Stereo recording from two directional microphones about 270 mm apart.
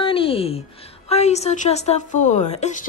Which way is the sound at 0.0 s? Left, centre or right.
Centre.